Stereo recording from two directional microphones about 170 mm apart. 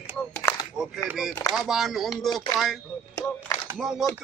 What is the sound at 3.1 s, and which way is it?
Speech, 20° left (ahead or behind).